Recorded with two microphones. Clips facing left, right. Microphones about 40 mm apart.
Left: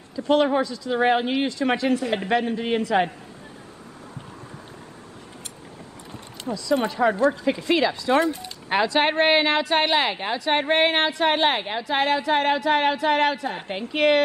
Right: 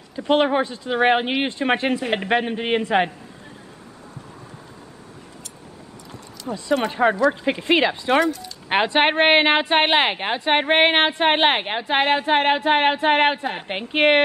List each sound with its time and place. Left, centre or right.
0.1 s speech: right
6.4 s speech: right
8.3 s speech: left
8.6 s speech: right